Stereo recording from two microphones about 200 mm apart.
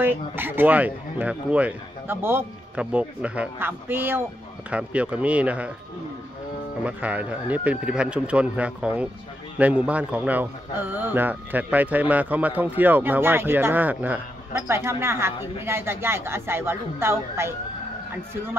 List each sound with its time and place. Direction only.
0.0 s a man's voice: 10° right (ahead or behind)
6.8 s a man's voice: 5° right (ahead or behind)